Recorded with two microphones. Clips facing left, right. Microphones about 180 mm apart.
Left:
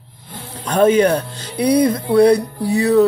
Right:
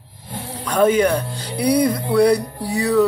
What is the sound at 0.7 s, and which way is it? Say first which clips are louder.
Music: left 3 dB; 25° left (ahead or behind).